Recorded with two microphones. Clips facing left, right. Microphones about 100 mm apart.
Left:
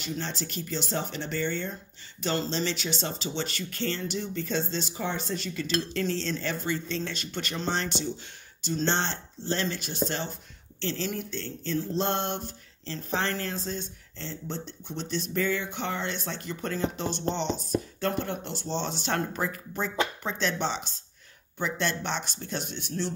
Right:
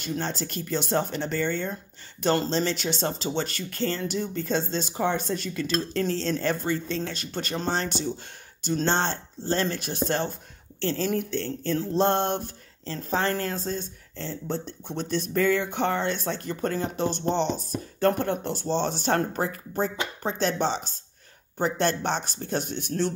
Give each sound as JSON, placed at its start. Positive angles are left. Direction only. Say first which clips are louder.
{"t": 0.0, "sound": "speech", "louder": "right 4 dB", "side_deg": -45}